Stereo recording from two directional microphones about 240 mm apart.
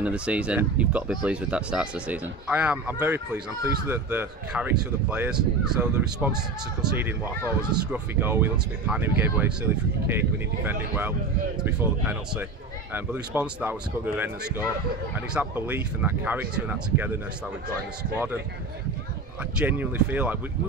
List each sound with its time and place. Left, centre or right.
0.0 s speech: centre
19.6 s speech: centre